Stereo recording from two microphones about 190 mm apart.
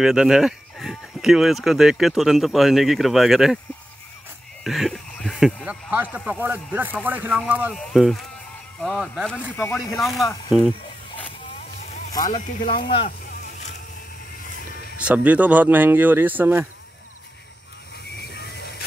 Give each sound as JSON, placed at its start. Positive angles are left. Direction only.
{"t": 0.0, "sound": "speech", "side_deg": -5}
{"t": 4.6, "sound": "speech", "side_deg": 0}
{"t": 12.3, "sound": "speech", "side_deg": 40}
{"t": 12.8, "sound": "speech", "side_deg": 30}
{"t": 15.0, "sound": "speech", "side_deg": -5}
{"t": 18.3, "sound": "a sound", "side_deg": 60}